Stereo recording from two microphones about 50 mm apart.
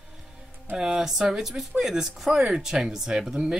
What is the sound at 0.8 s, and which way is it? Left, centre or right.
Speech, centre.